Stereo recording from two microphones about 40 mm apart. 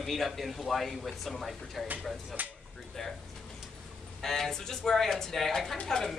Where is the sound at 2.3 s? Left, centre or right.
Right.